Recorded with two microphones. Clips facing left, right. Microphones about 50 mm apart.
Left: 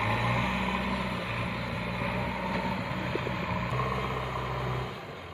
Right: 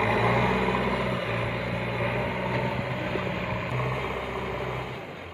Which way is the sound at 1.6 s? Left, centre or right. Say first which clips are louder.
Right 4 dB; right.